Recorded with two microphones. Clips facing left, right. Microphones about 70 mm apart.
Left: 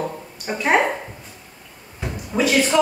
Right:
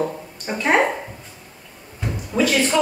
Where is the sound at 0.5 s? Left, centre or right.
Centre.